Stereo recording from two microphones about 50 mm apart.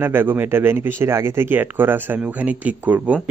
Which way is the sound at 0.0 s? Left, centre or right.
Right.